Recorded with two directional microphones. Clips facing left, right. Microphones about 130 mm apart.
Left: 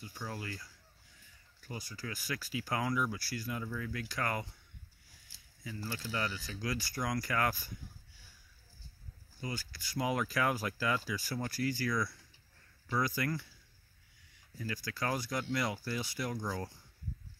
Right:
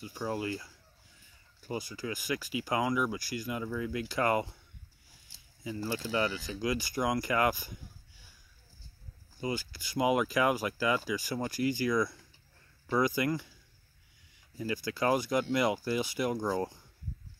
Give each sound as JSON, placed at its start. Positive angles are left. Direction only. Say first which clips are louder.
{"t": 0.2, "sound": "speech", "louder": "right 9 dB", "side_deg": -20}
{"t": 5.6, "sound": "speech", "louder": "right 7 dB", "side_deg": -20}
{"t": 9.4, "sound": "speech", "louder": "right 7 dB", "side_deg": -25}
{"t": 14.6, "sound": "speech", "louder": "right 7 dB", "side_deg": -20}